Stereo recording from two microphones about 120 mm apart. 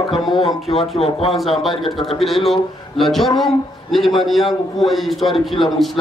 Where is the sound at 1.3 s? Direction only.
Centre (ahead or behind).